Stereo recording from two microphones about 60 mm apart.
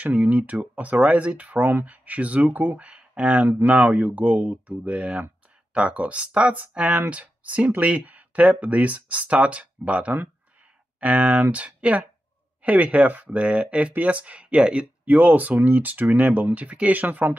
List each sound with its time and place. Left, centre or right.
0.0 s speech: right
3.4 s speech: right
16.9 s speech: right